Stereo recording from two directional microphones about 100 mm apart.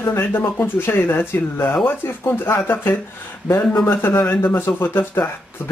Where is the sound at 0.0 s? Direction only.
25° left (ahead or behind).